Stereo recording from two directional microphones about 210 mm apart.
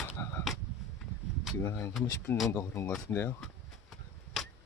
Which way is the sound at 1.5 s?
10° left (ahead or behind).